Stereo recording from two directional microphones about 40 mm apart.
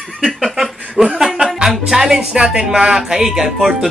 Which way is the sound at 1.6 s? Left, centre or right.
Centre.